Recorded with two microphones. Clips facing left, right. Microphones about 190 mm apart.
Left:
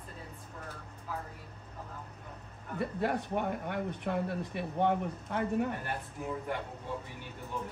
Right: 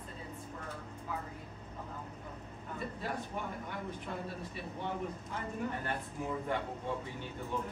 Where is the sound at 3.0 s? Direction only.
65° left (ahead or behind).